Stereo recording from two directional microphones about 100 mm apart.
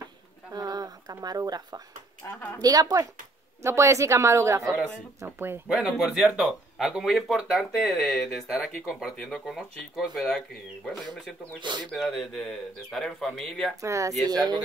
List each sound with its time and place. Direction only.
0.5 s a sound: 40° right (ahead or behind)
2.2 s speech: 30° left (ahead or behind)
2.6 s a woman's voice: 40° right (ahead or behind); by 5.6 s 20° right (ahead or behind)
5.7 s speech: 10° right (ahead or behind)
11.6 s speech: 50° right (ahead or behind)
11.9 s speech: centre (ahead or behind)
13.7 s a woman's voice: 30° right (ahead or behind)